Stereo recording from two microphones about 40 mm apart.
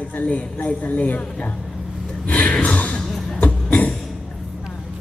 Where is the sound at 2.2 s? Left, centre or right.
Left.